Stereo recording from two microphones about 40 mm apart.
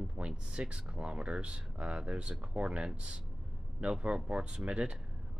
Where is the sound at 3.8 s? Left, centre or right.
Centre.